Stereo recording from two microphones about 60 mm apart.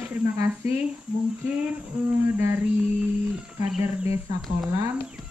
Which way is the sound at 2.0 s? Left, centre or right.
Right.